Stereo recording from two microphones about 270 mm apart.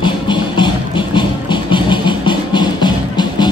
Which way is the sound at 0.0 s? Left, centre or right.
Centre.